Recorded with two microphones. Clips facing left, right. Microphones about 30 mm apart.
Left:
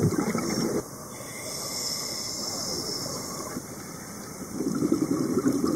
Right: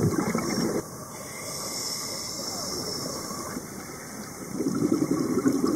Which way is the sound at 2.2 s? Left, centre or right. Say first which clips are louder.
Even; left.